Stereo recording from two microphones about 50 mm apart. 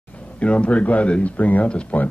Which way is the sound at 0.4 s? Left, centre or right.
Left.